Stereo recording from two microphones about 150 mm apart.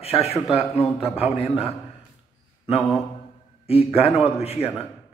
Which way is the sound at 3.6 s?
40° left (ahead or behind).